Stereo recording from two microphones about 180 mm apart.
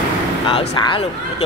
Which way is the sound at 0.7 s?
25° left (ahead or behind).